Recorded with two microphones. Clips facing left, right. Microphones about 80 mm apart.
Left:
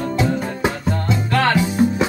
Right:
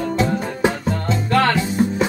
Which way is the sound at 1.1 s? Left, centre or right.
Centre.